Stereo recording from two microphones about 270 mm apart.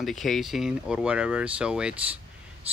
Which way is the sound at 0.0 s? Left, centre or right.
Centre.